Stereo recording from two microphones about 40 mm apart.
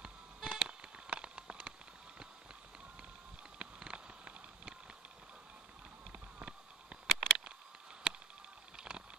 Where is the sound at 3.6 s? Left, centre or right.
Right.